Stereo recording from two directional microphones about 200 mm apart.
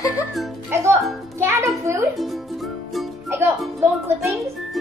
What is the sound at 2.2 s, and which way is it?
Music, centre (ahead or behind).